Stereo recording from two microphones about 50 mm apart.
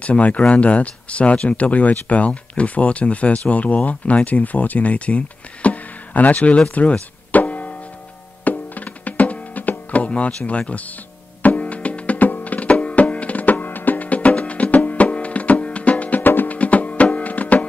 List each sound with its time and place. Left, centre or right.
0.0 s speech: left
6.7 s music: left
16.5 s music: left